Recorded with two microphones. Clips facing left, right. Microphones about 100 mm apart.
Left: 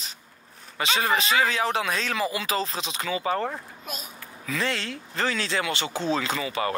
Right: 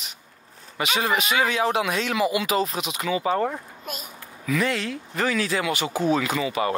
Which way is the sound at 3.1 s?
30° right (ahead or behind).